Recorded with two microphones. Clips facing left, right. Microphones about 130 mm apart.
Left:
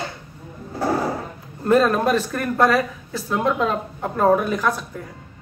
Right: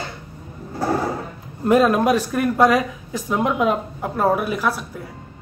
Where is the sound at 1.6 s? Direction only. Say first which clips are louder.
Right 1 dB; 10° right (ahead or behind).